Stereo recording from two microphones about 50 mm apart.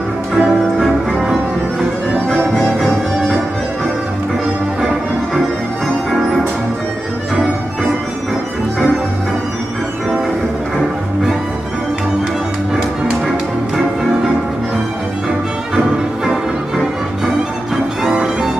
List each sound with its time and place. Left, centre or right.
0.4 s music: centre
6.0 s music: centre
18.0 s music: centre